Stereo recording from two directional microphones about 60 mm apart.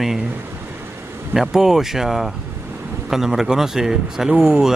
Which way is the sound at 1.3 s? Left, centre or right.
Centre.